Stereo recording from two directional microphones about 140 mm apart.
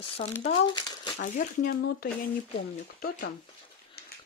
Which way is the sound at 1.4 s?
65° left (ahead or behind).